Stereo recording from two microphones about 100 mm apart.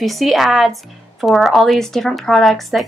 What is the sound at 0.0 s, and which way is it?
A woman's voice, centre (ahead or behind).